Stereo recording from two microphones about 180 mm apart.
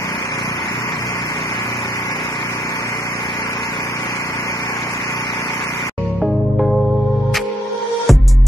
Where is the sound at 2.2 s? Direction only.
30° left (ahead or behind).